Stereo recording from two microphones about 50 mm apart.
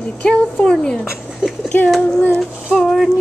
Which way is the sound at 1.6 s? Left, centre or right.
Left.